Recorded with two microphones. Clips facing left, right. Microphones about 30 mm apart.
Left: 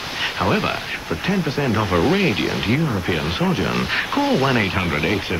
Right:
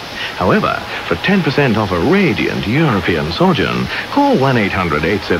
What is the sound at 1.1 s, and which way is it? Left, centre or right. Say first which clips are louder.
Speech: right 8 dB; right.